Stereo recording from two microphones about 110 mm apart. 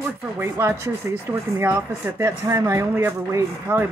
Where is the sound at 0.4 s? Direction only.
25° right (ahead or behind).